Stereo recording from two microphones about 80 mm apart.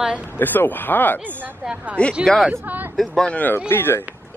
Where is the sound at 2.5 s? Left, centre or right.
Right.